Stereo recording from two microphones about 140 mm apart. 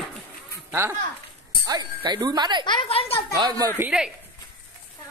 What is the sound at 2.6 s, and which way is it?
Speech, 35° left (ahead or behind).